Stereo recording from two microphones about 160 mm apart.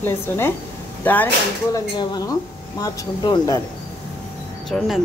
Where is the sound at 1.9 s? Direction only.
25° left (ahead or behind).